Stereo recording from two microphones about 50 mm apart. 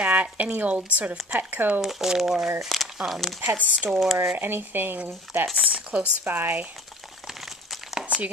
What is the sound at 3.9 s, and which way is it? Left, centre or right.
Speech, centre.